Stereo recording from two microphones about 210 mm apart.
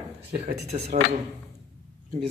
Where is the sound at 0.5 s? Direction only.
30° right (ahead or behind).